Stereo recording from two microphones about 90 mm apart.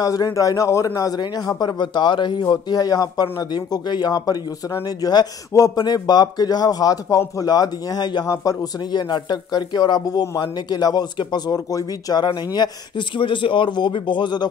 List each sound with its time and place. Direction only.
0.0 s speech: 40° left (ahead or behind); by 2.4 s 60° left (ahead or behind)
2.5 s speech: 45° left (ahead or behind)